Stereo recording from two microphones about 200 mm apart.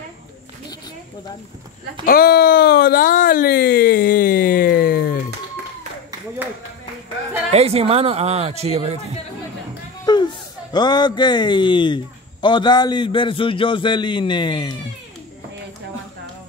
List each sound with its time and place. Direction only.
2.0 s speech: 50° left (ahead or behind)
7.5 s speech: 30° right (ahead or behind)
10.1 s a sound: 20° left (ahead or behind)
10.7 s a man's voice: 20° left (ahead or behind)